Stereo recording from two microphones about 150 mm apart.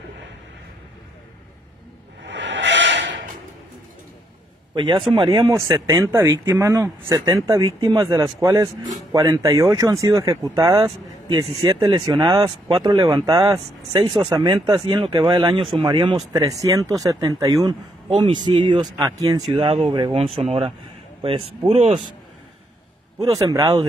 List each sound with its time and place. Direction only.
4.7 s speech: 30° right (ahead or behind)
10.8 s speech: 35° right (ahead or behind)
19.5 s speech: 40° right (ahead or behind)
23.1 s speech: 25° right (ahead or behind)